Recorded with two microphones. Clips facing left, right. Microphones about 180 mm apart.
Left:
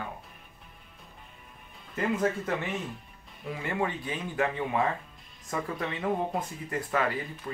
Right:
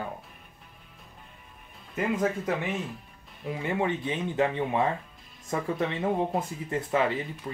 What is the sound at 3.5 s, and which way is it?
Speech, 20° right (ahead or behind).